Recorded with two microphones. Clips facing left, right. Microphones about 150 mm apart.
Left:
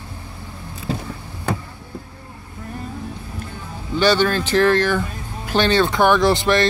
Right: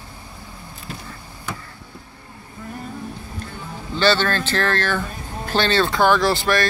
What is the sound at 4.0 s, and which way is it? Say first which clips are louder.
Speech: left 2 dB; 15° left (ahead or behind).